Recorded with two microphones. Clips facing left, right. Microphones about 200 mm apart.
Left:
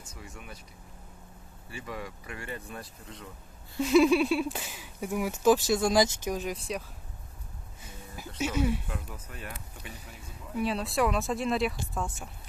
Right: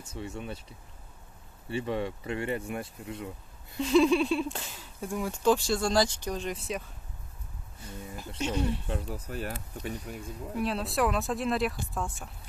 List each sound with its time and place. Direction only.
0.1 s speech: 30° right (ahead or behind)
1.7 s speech: 30° right (ahead or behind)
3.8 s speech: 5° left (ahead or behind)
8.4 s speech: 5° left (ahead or behind)
8.8 s speech: 30° right (ahead or behind)
10.5 s speech: centre (ahead or behind)